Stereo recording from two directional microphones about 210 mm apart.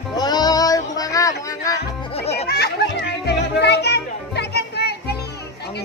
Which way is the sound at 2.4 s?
50° left (ahead or behind).